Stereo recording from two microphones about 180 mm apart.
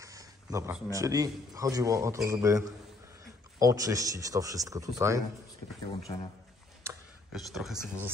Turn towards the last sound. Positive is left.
turn(degrees=0)  # may be behind; listen again after turning